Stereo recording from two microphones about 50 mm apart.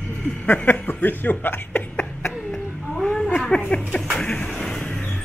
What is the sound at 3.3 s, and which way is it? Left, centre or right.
Speech, centre.